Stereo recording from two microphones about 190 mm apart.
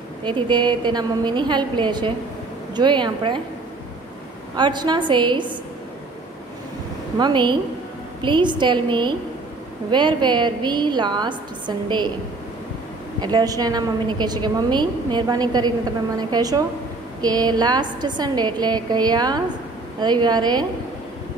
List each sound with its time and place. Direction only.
0.2 s a woman's voice: 25° right (ahead or behind)
4.6 s a woman's voice: 25° right (ahead or behind)
7.2 s a woman's voice: 25° right (ahead or behind)
13.2 s a woman's voice: 20° right (ahead or behind)